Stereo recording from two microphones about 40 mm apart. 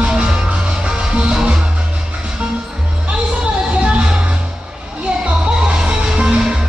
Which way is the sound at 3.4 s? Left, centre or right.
Right.